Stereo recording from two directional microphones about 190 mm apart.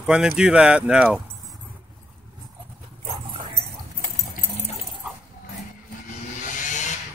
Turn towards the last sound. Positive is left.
turn(degrees=40)  # may be behind; listen again after turning